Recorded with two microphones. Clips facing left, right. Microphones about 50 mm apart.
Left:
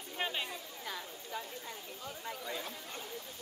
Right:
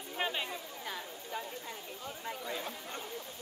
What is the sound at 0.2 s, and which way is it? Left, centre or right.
Chatter, centre.